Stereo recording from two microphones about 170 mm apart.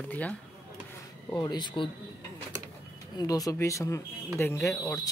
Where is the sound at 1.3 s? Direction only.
25° left (ahead or behind).